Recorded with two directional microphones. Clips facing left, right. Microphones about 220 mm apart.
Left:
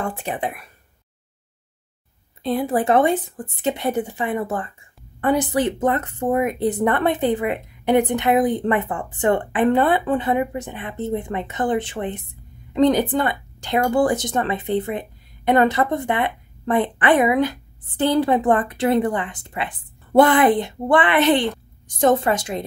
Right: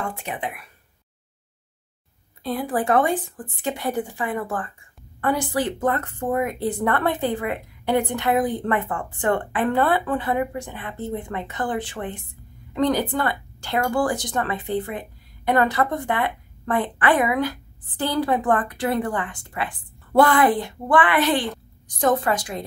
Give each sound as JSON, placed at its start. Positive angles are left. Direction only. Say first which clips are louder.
{"t": 0.1, "sound": "speech", "louder": "left 4 dB", "side_deg": 35}
{"t": 2.4, "sound": "speech", "louder": "left 4 dB", "side_deg": 25}